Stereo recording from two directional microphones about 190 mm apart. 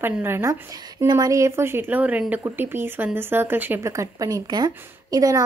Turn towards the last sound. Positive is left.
turn(degrees=-20)  # may be behind; listen again after turning